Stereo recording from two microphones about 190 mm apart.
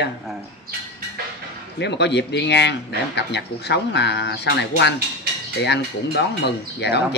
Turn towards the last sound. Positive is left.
turn(degrees=60)  # may be behind; listen again after turning